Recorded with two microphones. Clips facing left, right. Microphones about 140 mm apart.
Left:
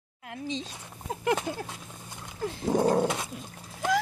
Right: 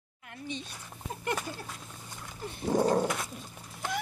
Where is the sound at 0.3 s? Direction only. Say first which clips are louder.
Left 5 dB; 90° left.